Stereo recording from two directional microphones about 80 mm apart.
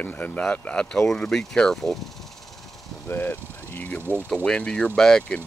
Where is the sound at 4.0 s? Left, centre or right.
Right.